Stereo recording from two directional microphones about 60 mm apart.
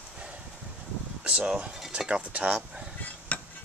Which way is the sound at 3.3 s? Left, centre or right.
Left.